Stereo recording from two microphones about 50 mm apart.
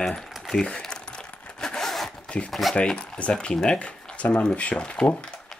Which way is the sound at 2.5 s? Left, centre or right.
Centre.